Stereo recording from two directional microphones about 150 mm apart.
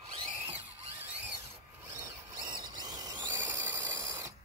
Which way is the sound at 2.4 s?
30° right (ahead or behind).